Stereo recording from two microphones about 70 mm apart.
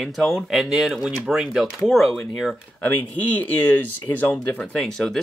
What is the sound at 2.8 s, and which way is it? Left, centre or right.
Speech, left.